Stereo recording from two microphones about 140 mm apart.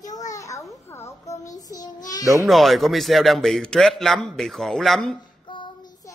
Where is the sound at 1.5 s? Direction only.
25° left (ahead or behind).